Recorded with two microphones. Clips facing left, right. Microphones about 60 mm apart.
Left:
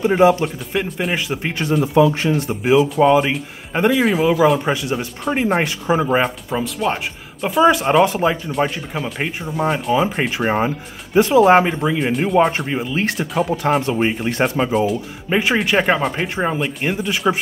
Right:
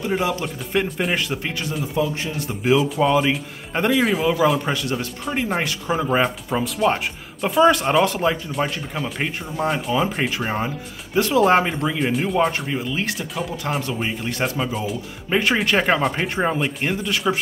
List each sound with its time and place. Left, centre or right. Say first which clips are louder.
0.0 s speech: left 9 dB; left
0.7 s a man's voice: even; centre
2.0 s speech: left 9 dB; left
2.6 s speech: left 4 dB; centre
6.0 s a man's voice: left 2 dB; centre
10.3 s speech: left 6 dB; left
11.4 s a man's voice: left 4 dB; centre
12.4 s speech: left 7 dB; centre
12.9 s speech: left 6 dB; left
15.2 s speech: left 2 dB; centre
16.9 s speech: left 2 dB; centre